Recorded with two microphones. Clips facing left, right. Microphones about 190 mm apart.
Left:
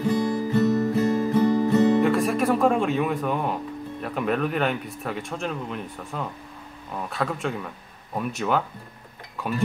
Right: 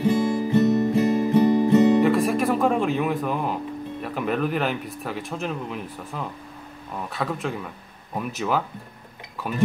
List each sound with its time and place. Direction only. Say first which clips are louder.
0.0 s music: right 2 dB; 20° right (ahead or behind)
2.0 s music: right 1 dB; centre (ahead or behind)
4.0 s speech: even; centre (ahead or behind)